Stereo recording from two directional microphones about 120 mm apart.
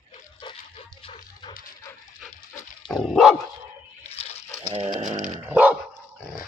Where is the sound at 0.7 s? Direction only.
55° left (ahead or behind).